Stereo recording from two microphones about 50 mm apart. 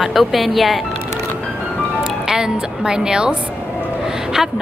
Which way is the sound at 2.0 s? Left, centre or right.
Centre.